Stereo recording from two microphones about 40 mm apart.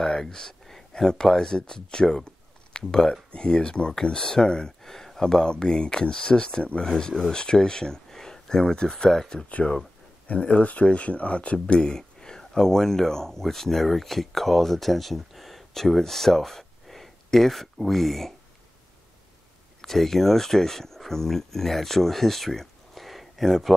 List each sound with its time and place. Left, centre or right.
0.0 s speech: centre
6.9 s speech: centre
10.3 s speech: left; by 18.3 s centre
19.8 s speech: centre